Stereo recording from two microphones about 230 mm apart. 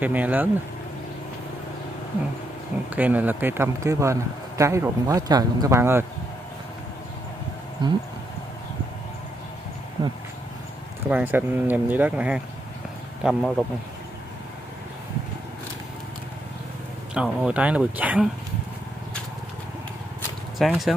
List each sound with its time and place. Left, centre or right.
0.0 s speech: centre
2.9 s speech: centre
7.8 s speech: centre
10.0 s speech: centre
11.1 s speech: centre
17.1 s speech: centre
20.2 s a sound: centre